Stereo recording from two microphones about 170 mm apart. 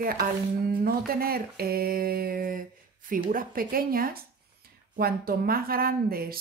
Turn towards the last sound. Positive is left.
turn(degrees=-60)  # may be behind; listen again after turning